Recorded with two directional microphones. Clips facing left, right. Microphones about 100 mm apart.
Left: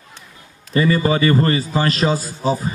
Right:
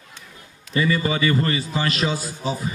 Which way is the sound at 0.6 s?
40° left (ahead or behind).